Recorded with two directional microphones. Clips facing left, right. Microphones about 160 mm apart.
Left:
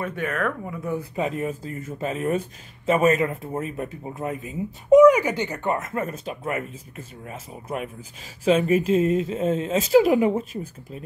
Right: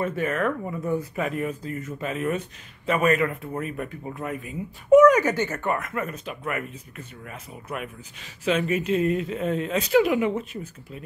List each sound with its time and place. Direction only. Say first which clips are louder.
0.0 s speech: right 2 dB; centre (ahead or behind)
1.1 s speech: left 1 dB; 25° left (ahead or behind)
8.5 s speech: left 2 dB; 30° left (ahead or behind)
10.0 s speech: left 4 dB; 35° left (ahead or behind)